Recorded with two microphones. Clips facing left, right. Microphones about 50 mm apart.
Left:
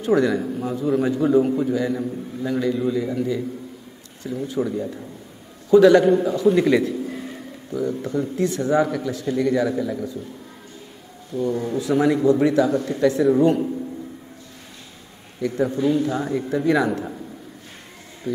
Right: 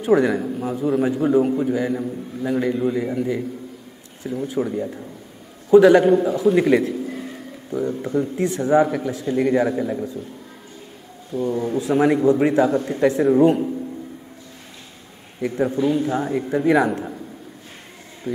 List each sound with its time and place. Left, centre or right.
0.0 s a man's voice: right
0.4 s a man's voice: centre; by 3.4 s right
4.2 s a man's voice: centre
6.0 s a man's voice: centre
7.1 s a sound: centre
7.7 s a man's voice: right
11.5 s a man's voice: right
13.3 s a man's voice: centre
15.5 s a man's voice: right
18.3 s a man's voice: right